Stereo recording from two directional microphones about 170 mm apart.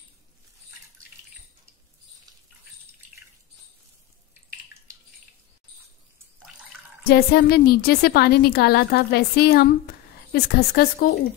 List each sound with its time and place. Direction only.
7.1 s a woman's voice: 65° left (ahead or behind)